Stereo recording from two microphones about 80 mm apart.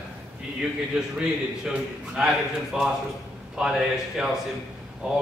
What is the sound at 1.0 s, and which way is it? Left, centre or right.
Speech, centre.